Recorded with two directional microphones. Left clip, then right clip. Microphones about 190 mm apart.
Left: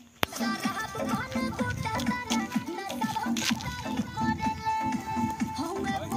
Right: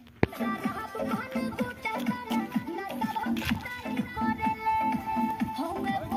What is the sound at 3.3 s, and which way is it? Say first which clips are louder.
Speech: left 2 dB; 5° right (ahead or behind).